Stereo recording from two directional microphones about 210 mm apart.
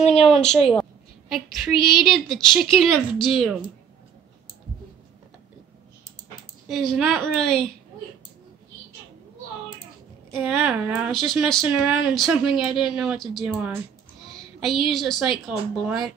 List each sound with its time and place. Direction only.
0.0 s a sound: 30° left (ahead or behind)
0.3 s speech: 5° left (ahead or behind)
6.7 s speech: centre (ahead or behind)
10.3 s speech: centre (ahead or behind)